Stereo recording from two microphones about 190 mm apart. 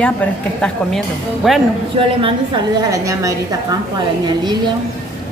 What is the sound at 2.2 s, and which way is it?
A woman's voice, 25° right (ahead or behind).